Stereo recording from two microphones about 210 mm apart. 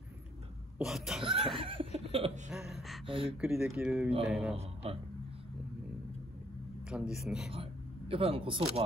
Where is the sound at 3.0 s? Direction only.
25° right (ahead or behind).